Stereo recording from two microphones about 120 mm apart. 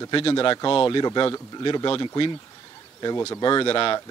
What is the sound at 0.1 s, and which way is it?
Speech, 45° left (ahead or behind).